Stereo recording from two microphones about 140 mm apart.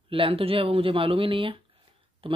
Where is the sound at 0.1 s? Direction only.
40° right (ahead or behind).